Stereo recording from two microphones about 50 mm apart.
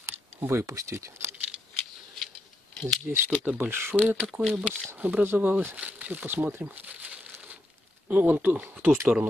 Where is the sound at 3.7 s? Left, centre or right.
Right.